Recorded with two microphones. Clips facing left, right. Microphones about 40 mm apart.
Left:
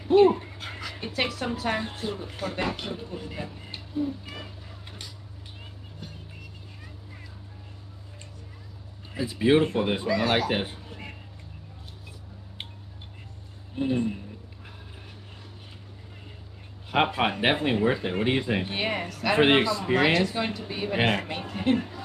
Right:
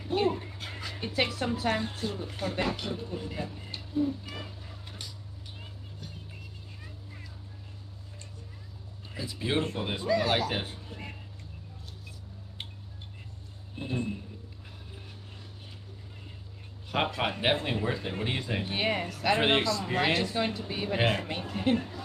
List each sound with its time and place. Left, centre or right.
0.2 s speech: left
1.0 s speech: centre
1.7 s speech: centre
3.3 s a sound: left
9.1 s speech: left
13.7 s speech: left
16.9 s a woman's voice: left